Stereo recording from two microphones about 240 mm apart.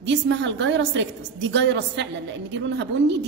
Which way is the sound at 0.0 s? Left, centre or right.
Right.